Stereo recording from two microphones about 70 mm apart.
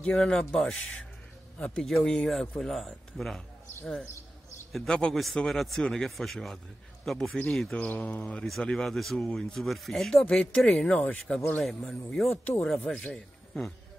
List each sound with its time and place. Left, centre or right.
0.0 s speech: centre
1.9 s a man's voice: centre
7.7 s mantra: centre
8.6 s a man's voice: centre
10.2 s a man's voice: centre
12.8 s a man's voice: centre